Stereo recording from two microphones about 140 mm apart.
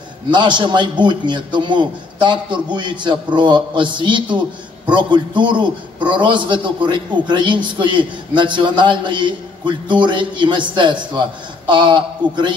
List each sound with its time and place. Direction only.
0.3 s a man's voice: 35° right (ahead or behind)